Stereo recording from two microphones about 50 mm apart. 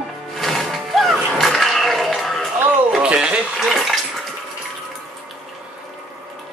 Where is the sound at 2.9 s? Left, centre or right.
Right.